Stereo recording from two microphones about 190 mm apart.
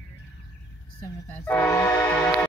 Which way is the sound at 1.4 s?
15° left (ahead or behind).